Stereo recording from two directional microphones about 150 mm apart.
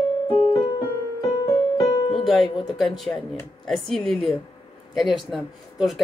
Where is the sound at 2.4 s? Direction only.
30° left (ahead or behind).